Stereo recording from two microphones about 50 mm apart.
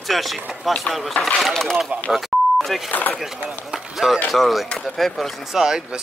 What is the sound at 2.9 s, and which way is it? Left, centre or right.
Speech, left.